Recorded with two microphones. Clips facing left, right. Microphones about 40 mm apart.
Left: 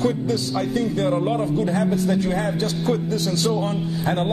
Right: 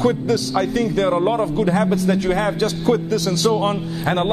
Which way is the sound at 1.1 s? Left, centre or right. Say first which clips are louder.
Right 3 dB; right.